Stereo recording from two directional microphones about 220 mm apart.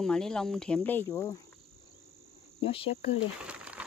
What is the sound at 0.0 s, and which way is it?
Speech, 5° left (ahead or behind).